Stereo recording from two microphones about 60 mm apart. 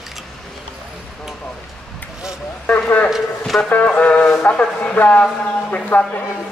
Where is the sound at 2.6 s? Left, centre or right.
Left.